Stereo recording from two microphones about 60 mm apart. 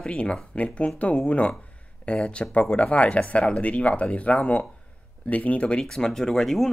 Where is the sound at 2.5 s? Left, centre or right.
Left.